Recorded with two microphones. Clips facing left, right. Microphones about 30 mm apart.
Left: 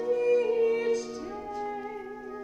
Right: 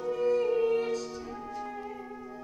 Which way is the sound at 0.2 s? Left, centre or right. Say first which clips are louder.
Even; centre.